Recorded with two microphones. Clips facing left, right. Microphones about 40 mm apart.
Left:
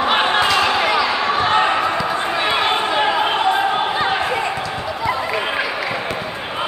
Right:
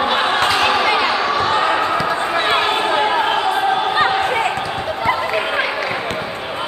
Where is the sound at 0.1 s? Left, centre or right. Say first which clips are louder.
Even; left.